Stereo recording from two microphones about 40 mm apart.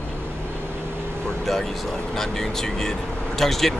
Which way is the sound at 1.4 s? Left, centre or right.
Centre.